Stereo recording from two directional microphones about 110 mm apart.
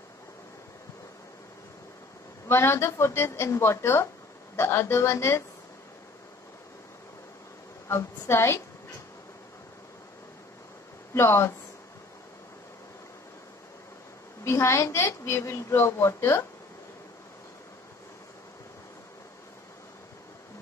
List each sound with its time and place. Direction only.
2.4 s a woman's voice: 25° left (ahead or behind)
7.9 s a woman's voice: 25° left (ahead or behind)
11.1 s a woman's voice: 25° left (ahead or behind)
14.4 s a woman's voice: 25° left (ahead or behind)